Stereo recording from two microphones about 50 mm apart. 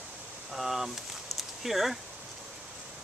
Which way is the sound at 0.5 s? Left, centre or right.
Centre.